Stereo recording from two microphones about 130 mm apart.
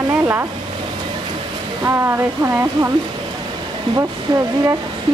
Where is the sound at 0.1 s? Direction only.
20° right (ahead or behind).